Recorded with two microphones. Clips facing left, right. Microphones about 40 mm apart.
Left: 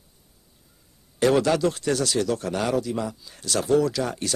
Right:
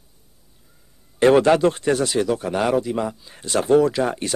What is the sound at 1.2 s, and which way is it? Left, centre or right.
Speech, right.